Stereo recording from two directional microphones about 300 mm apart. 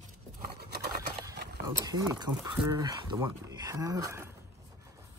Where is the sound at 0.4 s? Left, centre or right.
Right.